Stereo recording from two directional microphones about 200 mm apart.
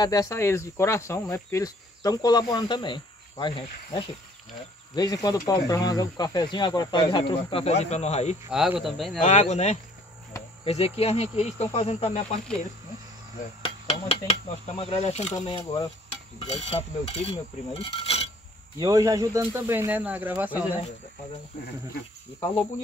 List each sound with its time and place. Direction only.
0.0 s speech: 15° left (ahead or behind); by 8.4 s 35° left (ahead or behind)
8.5 s speech: 5° right (ahead or behind)
9.2 s speech: 35° left (ahead or behind)
13.8 s speech: 30° left (ahead or behind)
15.3 s speech: 20° left (ahead or behind)
16.7 s speech: 30° left (ahead or behind)
18.8 s speech: 20° right (ahead or behind)